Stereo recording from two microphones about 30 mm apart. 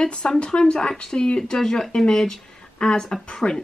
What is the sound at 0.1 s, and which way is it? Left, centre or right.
Speech, left.